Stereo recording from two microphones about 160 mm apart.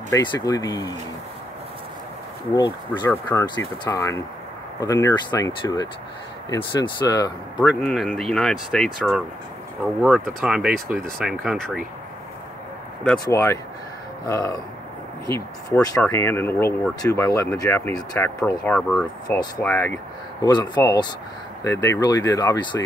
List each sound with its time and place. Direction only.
0.1 s speech: 25° left (ahead or behind)
2.5 s speech: 25° left (ahead or behind)
7.6 s speech: centre (ahead or behind)
13.2 s speech: 15° left (ahead or behind)
16.0 s speech: 15° left (ahead or behind)
19.2 s speech: 25° left (ahead or behind)
19.6 s speech: 10° left (ahead or behind)
20.4 s speech: 25° left (ahead or behind)